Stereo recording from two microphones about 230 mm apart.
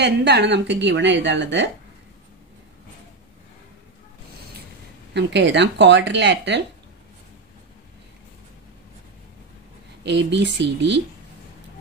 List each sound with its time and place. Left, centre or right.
0.0 s a woman's voice: right
5.1 s a woman's voice: right
10.0 s a woman's voice: right